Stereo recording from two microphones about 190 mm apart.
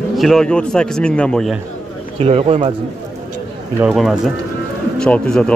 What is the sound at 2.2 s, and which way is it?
Speech, 30° right (ahead or behind).